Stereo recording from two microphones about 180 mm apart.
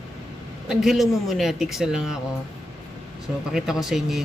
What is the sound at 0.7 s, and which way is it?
Speech, centre (ahead or behind).